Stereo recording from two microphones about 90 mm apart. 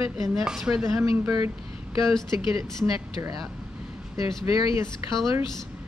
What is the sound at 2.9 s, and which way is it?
Speech, 40° right (ahead or behind).